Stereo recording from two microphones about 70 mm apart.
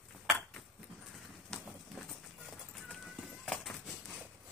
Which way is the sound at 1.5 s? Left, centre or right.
Centre.